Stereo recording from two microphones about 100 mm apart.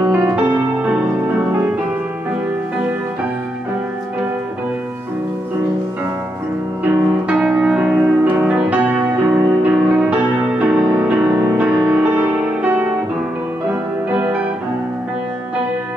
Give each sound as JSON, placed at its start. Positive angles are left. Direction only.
{"t": 0.2, "sound": "music", "side_deg": -15}
{"t": 6.8, "sound": "music", "side_deg": -15}
{"t": 14.1, "sound": "music", "side_deg": -10}